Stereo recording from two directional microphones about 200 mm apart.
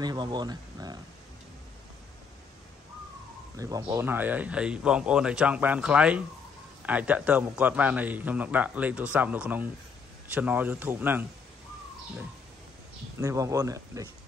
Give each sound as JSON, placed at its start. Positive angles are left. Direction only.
{"t": 0.0, "sound": "speech", "side_deg": -20}
{"t": 3.5, "sound": "a man's voice", "side_deg": -15}
{"t": 13.2, "sound": "a man's voice", "side_deg": -15}